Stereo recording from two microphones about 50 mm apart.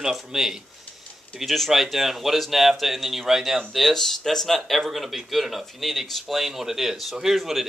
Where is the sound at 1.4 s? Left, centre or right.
Centre.